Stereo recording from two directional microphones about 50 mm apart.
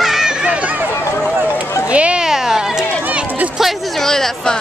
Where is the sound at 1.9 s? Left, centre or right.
Right.